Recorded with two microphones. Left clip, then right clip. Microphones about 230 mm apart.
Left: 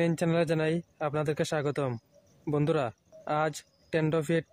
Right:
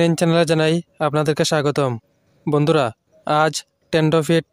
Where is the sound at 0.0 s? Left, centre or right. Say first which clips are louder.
Right 11 dB; right.